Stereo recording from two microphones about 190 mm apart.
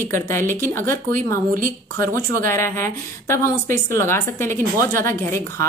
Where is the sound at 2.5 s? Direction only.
15° left (ahead or behind).